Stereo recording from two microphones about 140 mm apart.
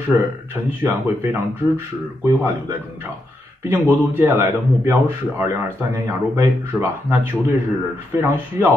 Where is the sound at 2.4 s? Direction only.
20° right (ahead or behind).